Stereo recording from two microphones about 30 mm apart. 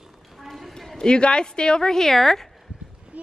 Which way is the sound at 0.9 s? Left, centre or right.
Left.